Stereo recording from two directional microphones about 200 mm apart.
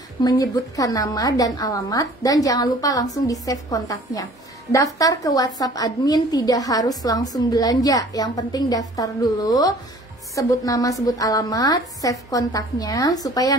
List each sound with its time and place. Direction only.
0.2 s a woman's voice: 20° left (ahead or behind)